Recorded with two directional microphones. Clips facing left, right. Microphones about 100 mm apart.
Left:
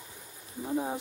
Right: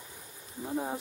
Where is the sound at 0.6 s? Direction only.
Centre (ahead or behind).